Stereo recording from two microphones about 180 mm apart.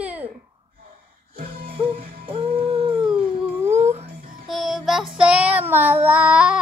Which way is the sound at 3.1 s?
15° right (ahead or behind).